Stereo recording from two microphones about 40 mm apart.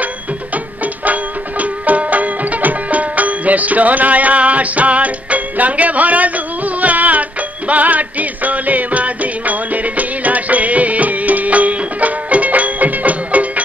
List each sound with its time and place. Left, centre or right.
1.0 s music: right